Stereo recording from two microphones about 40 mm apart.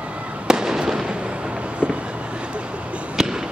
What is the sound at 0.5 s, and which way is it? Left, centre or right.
Fireworks, centre.